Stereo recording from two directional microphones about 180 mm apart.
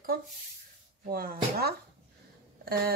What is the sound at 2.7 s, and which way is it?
Speech, 55° right (ahead or behind).